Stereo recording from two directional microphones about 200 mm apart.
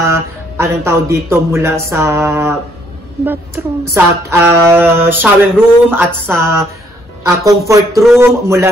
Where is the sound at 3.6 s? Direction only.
10° right (ahead or behind).